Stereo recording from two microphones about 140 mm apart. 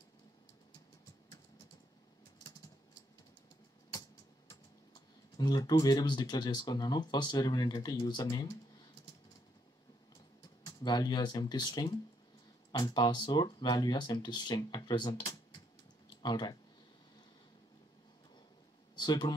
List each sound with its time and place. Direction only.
4.5 s speech: 30° left (ahead or behind)
10.6 s speech: 30° left (ahead or behind)
18.9 s speech: 30° left (ahead or behind)